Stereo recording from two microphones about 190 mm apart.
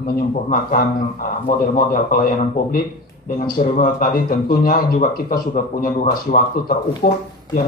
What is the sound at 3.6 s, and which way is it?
A man's voice, 50° left (ahead or behind).